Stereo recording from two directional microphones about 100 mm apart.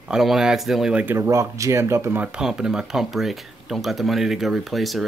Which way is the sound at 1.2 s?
30° right (ahead or behind).